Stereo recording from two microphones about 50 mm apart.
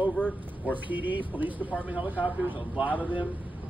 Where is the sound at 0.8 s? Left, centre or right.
Right.